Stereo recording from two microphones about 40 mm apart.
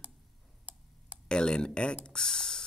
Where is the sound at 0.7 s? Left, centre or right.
Right.